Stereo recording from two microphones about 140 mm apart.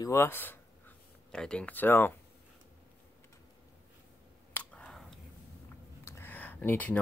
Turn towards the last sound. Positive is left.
turn(degrees=10)  # may be behind; listen again after turning